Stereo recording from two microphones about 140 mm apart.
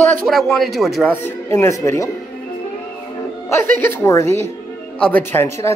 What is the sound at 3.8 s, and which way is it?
Speech, 15° left (ahead or behind).